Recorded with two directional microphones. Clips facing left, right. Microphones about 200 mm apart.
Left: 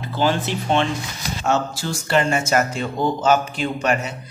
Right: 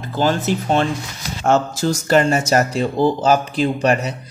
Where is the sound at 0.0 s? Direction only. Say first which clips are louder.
Right 2 dB; 45° right (ahead or behind).